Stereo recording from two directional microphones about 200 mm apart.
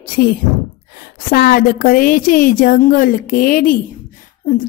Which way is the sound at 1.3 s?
50° left (ahead or behind).